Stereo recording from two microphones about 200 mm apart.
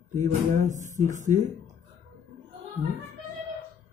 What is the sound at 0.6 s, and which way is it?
Speech, 35° right (ahead or behind).